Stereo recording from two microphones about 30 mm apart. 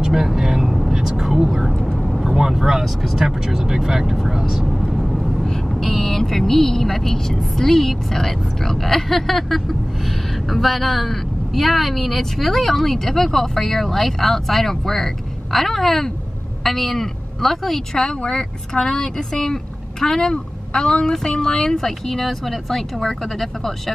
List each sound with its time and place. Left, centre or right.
0.0 s speech: centre
2.0 s vehicle: centre
2.3 s speech: centre
4.9 s vehicle: centre
5.3 s speech: centre
17.9 s speech: centre